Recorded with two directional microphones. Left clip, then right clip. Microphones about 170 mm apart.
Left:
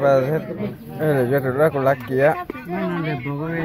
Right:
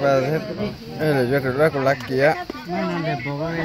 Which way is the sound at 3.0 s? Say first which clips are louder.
Right 1 dB; 20° left (ahead or behind).